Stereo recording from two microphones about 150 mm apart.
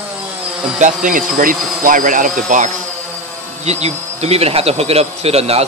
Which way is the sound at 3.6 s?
45° right (ahead or behind).